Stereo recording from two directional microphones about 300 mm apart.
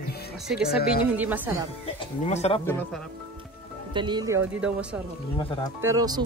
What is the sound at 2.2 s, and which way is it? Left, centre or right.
Speech, left.